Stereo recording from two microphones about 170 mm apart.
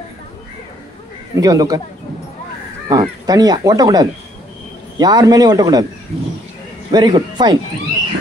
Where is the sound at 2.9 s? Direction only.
20° right (ahead or behind).